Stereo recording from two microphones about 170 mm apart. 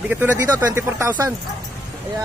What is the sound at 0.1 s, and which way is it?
Speech, 10° right (ahead or behind).